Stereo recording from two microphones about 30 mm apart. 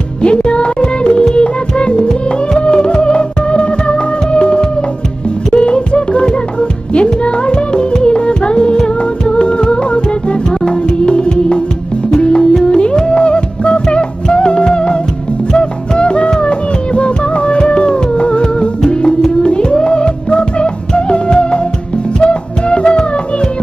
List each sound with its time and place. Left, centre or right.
0.2 s music: left
2.0 s music: left
2.6 s music: left
12.4 s music: left
12.7 s music: left